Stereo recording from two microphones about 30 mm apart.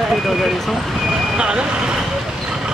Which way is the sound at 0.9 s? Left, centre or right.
Centre.